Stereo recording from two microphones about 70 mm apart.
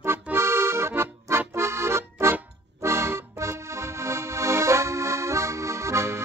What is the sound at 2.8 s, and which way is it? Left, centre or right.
Music, right.